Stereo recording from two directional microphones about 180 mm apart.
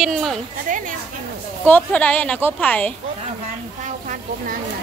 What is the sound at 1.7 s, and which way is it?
A woman's voice, 10° left (ahead or behind).